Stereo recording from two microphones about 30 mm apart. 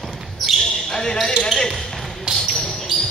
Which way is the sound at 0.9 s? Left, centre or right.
Centre.